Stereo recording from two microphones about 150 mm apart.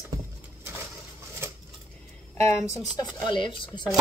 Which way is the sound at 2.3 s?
20° left (ahead or behind).